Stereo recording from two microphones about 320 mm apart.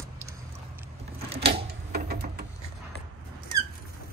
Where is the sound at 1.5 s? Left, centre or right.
Right.